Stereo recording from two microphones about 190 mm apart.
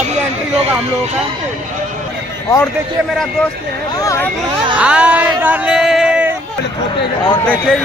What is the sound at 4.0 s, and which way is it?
Speech, 15° left (ahead or behind).